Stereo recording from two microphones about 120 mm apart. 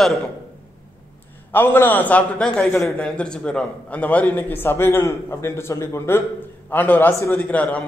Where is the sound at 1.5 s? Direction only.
20° left (ahead or behind).